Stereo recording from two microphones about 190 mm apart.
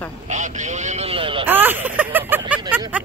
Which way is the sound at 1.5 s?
10° right (ahead or behind).